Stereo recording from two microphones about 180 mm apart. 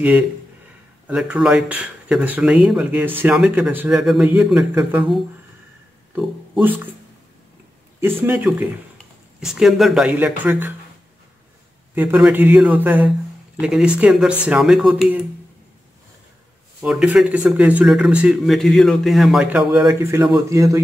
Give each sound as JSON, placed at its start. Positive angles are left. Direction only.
{"t": 1.0, "sound": "speech", "side_deg": -5}
{"t": 8.2, "sound": "speech", "side_deg": -10}
{"t": 11.9, "sound": "speech", "side_deg": -10}
{"t": 16.8, "sound": "speech", "side_deg": -5}